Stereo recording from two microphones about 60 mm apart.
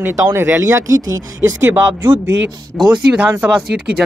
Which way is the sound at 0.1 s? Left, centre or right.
Right.